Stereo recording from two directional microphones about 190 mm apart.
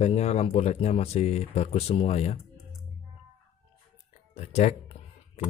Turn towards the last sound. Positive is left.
turn(degrees=35)  # may be behind; listen again after turning